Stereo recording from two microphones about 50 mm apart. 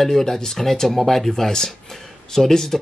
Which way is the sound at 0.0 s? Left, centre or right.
Centre.